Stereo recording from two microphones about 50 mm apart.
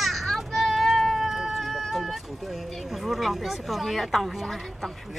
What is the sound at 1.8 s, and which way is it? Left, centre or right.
Speech, centre.